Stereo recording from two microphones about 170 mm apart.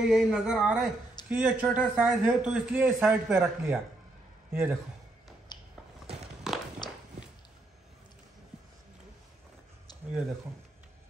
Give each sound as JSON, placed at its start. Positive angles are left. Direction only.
{"t": 0.0, "sound": "a man's voice", "side_deg": 0}
{"t": 5.5, "sound": "a sound", "side_deg": 25}
{"t": 6.5, "sound": "walk", "side_deg": 0}